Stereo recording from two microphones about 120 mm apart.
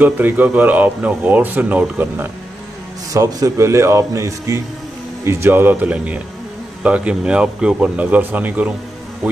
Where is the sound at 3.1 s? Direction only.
25° right (ahead or behind).